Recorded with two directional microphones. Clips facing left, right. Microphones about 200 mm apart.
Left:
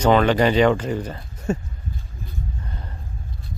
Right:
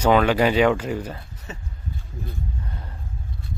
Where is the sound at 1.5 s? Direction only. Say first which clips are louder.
Left 15 dB; 50° left (ahead or behind).